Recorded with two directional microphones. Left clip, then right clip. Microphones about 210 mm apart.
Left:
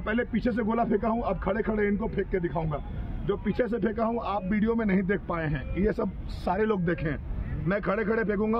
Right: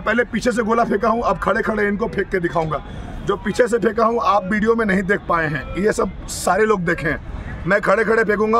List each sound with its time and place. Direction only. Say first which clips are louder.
0.0 s speech: right 10 dB; 15° right (ahead or behind)